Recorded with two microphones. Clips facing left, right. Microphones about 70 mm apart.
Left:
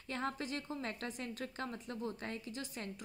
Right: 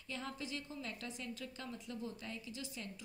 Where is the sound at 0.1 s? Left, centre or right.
Left.